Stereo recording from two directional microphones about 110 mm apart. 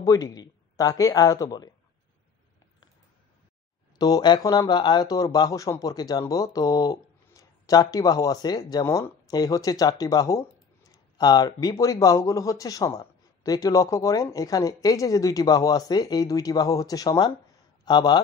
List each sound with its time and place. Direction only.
0.0 s speech: 35° left (ahead or behind)
4.0 s speech: 40° left (ahead or behind)